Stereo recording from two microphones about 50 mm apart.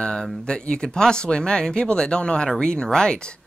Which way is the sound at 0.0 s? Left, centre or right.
Centre.